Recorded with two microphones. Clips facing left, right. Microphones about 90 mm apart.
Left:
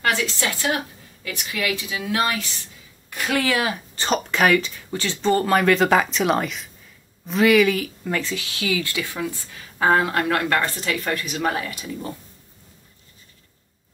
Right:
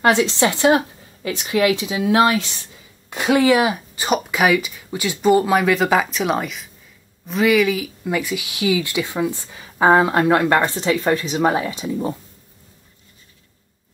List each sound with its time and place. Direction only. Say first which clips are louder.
0.0 s speech: right 7 dB; 25° right (ahead or behind)